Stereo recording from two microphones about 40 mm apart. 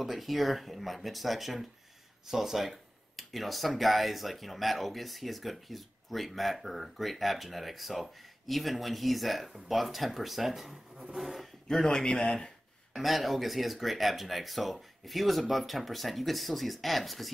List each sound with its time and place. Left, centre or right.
0.0 s speech: centre
11.8 s a man's voice: centre
12.9 s speech: centre